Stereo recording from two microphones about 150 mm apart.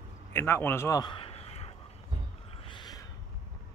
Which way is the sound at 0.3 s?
15° left (ahead or behind).